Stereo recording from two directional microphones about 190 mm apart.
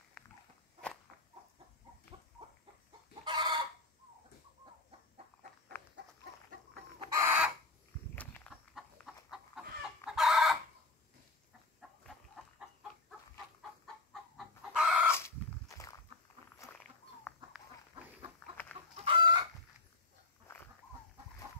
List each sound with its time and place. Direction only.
3.3 s chicken: 25° right (ahead or behind)
7.1 s chicken: 15° right (ahead or behind)
8.7 s chicken: centre (ahead or behind)
14.3 s chicken: 5° right (ahead or behind)
18.4 s chicken: 5° left (ahead or behind)
18.9 s chicken: 25° right (ahead or behind)